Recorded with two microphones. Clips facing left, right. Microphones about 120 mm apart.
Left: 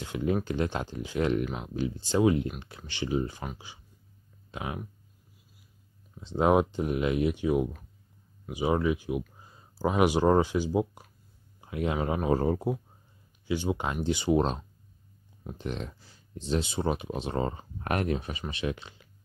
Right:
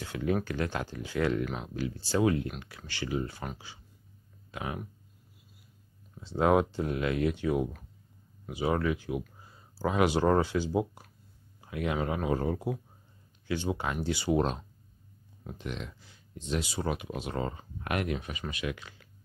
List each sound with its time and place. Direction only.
0.0 s speech: 20° left (ahead or behind)
6.1 s speech: 20° left (ahead or behind)
13.5 s speech: 15° left (ahead or behind)
15.6 s speech: 35° left (ahead or behind)